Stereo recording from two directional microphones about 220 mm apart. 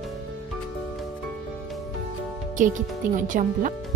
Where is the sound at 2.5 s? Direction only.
35° right (ahead or behind).